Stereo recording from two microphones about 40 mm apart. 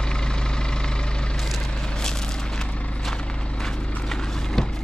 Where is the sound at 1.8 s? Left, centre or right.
Centre.